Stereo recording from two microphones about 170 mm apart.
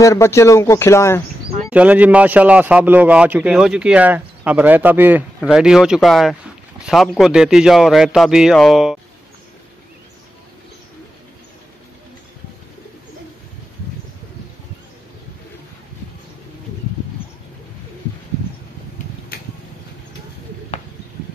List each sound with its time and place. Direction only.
0.0 s speech: 15° left (ahead or behind)
1.7 s a man's voice: 10° right (ahead or behind)